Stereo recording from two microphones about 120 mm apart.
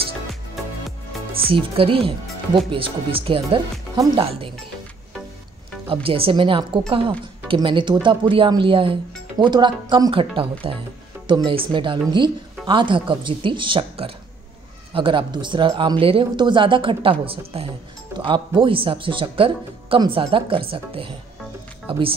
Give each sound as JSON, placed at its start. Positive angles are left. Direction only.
{"t": 1.3, "sound": "speech", "side_deg": -50}
{"t": 3.9, "sound": "speech", "side_deg": -35}
{"t": 6.0, "sound": "speech", "side_deg": -50}